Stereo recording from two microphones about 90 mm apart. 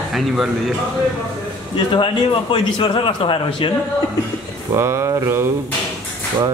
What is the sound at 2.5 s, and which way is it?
A man's voice, 75° left (ahead or behind).